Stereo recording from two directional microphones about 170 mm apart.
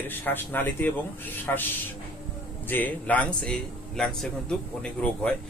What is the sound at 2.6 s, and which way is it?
A man's voice, 10° left (ahead or behind).